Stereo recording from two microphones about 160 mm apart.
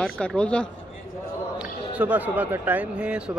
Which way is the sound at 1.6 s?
10° right (ahead or behind).